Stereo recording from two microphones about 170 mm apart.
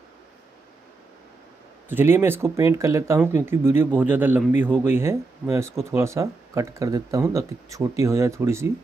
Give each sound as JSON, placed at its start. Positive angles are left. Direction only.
{"t": 1.9, "sound": "speech", "side_deg": -15}